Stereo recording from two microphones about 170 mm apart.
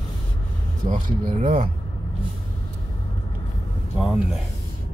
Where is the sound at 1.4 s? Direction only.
35° right (ahead or behind).